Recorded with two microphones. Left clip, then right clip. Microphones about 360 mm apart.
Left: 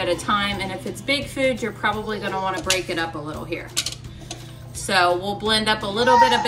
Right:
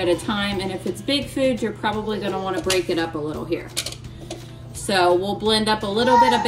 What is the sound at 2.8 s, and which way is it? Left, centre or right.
Speech, left.